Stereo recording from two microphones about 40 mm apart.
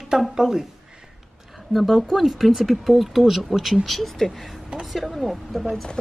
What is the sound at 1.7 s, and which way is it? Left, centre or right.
Speech, centre.